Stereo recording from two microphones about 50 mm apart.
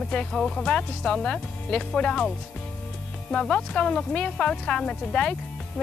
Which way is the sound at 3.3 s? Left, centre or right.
Centre.